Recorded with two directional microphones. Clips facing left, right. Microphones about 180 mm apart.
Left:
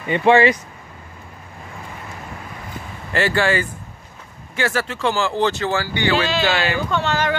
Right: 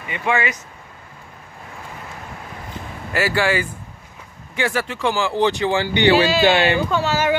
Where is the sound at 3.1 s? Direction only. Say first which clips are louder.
Left 1 dB; 5° right (ahead or behind).